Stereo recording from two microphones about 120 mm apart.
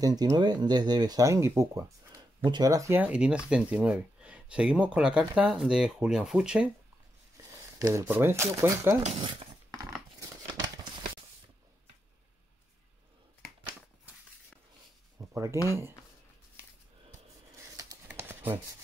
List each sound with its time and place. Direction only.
0.0 s speech: 35° right (ahead or behind)
2.4 s speech: 35° right (ahead or behind)
2.9 s speech: 10° right (ahead or behind)
7.8 s speech: 30° right (ahead or behind)
8.1 s speech: 20° right (ahead or behind)
9.2 s speech: 45° right (ahead or behind)
15.1 s a sound: 25° right (ahead or behind)
17.6 s a sound: 30° right (ahead or behind)
18.1 s a sound: 15° right (ahead or behind)